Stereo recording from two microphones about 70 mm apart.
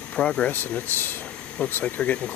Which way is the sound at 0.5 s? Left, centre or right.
Left.